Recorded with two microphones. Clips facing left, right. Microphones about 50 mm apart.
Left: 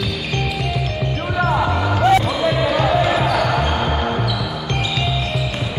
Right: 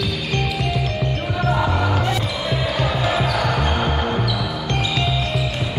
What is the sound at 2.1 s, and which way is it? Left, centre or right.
Basketball bounce, left.